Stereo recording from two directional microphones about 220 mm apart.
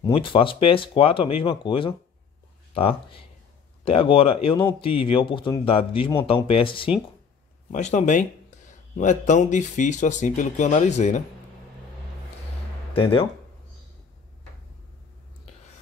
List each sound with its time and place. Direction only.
0.0 s speech: 25° left (ahead or behind)
7.7 s speech: 35° left (ahead or behind)
12.9 s speech: 25° left (ahead or behind)